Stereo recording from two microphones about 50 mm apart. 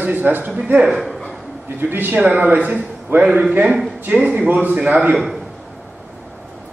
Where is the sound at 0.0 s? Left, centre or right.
Right.